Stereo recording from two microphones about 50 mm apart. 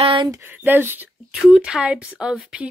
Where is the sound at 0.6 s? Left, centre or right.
Right.